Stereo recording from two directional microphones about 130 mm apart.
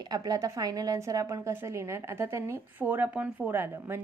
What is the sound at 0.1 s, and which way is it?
A woman's voice, 30° right (ahead or behind).